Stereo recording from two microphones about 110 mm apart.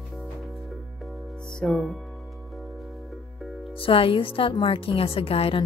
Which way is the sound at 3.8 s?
55° left (ahead or behind).